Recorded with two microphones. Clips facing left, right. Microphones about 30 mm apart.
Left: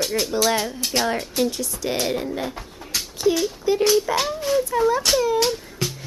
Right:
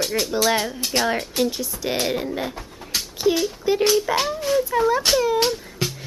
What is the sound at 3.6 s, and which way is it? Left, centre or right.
Speech, centre.